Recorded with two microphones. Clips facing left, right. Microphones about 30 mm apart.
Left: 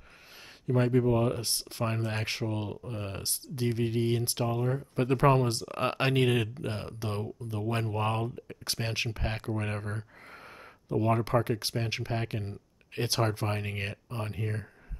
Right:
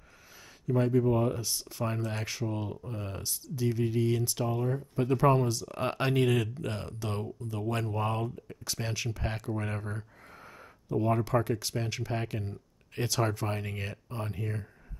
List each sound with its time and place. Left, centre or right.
0.7 s speech: left
1.0 s speech: left
1.3 s speech: left
6.3 s speech: centre